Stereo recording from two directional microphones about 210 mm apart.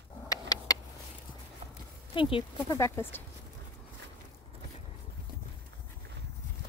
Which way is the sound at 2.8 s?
10° left (ahead or behind).